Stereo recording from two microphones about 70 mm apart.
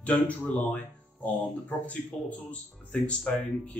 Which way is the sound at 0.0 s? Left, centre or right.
Centre.